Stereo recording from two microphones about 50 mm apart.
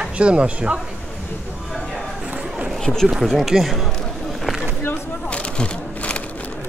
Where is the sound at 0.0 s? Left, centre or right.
Right.